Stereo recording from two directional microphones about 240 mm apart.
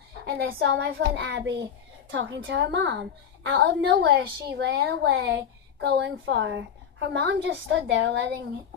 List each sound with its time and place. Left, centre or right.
0.4 s a child's voice: right